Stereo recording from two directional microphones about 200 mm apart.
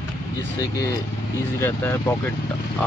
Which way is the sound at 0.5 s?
15° left (ahead or behind).